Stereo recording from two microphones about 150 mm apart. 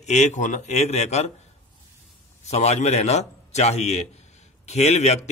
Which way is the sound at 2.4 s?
45° left (ahead or behind).